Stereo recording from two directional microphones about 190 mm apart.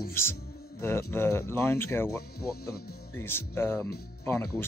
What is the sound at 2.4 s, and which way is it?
Speech, 55° left (ahead or behind).